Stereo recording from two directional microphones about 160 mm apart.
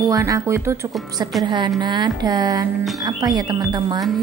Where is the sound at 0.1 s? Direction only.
20° right (ahead or behind).